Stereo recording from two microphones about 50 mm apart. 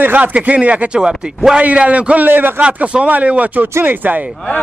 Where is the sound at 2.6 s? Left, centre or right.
Right.